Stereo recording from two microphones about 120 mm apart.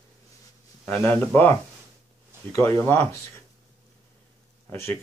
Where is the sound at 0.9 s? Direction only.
15° left (ahead or behind).